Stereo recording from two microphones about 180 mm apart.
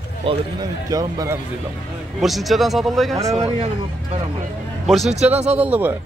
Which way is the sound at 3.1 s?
35° right (ahead or behind).